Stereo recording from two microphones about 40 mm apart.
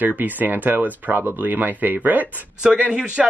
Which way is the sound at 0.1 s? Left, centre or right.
Right.